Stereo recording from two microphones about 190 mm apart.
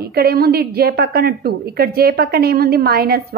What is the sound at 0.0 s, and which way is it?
A woman's voice, 55° right (ahead or behind).